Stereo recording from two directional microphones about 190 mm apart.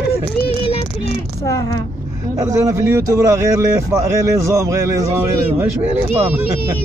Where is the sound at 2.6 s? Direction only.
15° right (ahead or behind).